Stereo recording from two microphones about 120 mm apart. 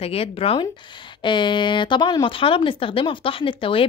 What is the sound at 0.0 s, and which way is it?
Speech, 55° left (ahead or behind).